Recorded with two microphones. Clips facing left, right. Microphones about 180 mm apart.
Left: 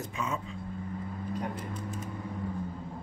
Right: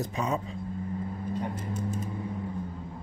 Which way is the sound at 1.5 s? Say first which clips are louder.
Right 4 dB; 45° right (ahead or behind).